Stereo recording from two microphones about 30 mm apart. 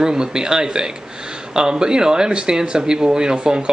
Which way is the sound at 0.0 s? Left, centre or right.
Right.